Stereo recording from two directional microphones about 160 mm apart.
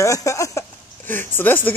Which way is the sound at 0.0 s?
20° left (ahead or behind).